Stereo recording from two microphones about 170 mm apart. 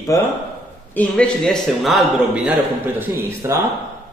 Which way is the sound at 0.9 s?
5° left (ahead or behind).